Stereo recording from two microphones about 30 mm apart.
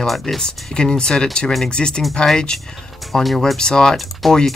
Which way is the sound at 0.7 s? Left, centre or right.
Left.